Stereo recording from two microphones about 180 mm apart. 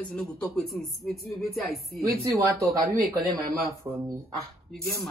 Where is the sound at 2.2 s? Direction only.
20° right (ahead or behind).